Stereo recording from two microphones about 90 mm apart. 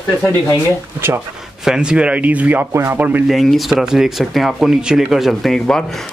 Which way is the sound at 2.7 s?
30° right (ahead or behind).